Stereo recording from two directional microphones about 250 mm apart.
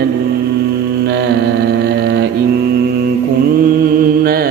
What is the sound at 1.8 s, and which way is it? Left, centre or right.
Mantra, right.